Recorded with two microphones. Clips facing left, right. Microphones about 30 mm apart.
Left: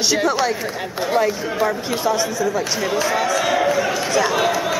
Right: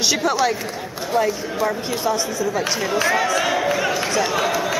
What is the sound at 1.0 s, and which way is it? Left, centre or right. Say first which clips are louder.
Speech: left 1 dB; centre.